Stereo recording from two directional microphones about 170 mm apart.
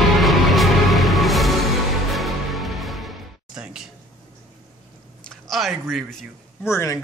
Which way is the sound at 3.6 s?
5° right (ahead or behind).